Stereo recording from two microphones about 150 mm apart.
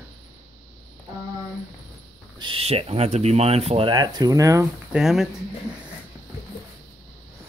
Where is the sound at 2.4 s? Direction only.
35° right (ahead or behind); by 4.7 s 20° right (ahead or behind).